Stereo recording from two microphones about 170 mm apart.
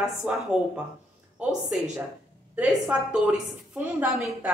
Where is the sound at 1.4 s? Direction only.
5° right (ahead or behind).